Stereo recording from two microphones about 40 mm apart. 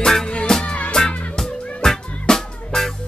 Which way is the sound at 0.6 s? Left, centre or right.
Left.